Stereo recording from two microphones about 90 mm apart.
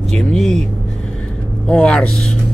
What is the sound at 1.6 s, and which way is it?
Speech, 10° left (ahead or behind).